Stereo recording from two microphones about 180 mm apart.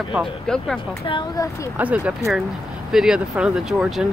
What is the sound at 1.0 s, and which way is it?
Speech, 25° left (ahead or behind).